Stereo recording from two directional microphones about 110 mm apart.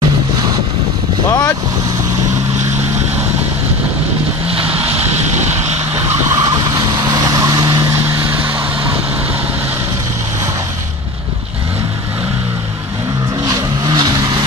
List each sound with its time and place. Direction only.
4.5 s vehicle: 65° right (ahead or behind)
7.2 s vehicle: 35° right (ahead or behind)
13.5 s vehicle: 40° right (ahead or behind)